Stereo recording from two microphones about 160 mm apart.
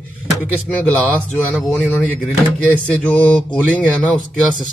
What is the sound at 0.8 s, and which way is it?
Speech, 10° left (ahead or behind).